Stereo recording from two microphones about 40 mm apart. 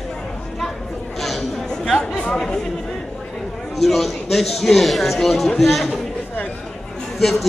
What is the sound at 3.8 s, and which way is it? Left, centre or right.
A man's voice, centre.